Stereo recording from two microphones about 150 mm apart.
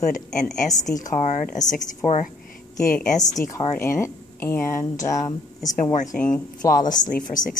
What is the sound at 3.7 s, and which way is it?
Speech, 15° left (ahead or behind).